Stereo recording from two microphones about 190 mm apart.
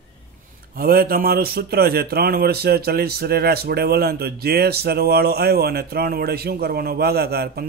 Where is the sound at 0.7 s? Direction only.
50° right (ahead or behind).